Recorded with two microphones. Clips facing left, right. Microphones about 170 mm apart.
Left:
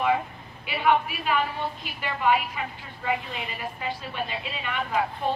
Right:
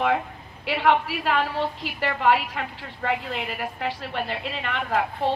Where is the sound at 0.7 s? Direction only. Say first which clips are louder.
Right 2 dB; 70° right (ahead or behind).